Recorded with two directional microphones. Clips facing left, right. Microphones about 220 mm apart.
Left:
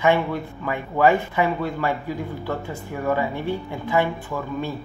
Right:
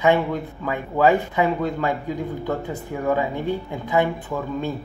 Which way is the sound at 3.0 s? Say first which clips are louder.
Right 1 dB; 15° right (ahead or behind).